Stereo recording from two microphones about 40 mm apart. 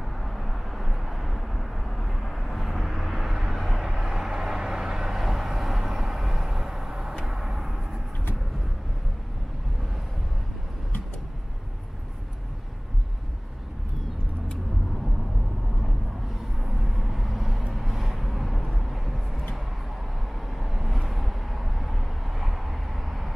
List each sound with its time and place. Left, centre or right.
0.2 s vehicle: centre
16.6 s vehicle: centre
20.5 s vehicle: centre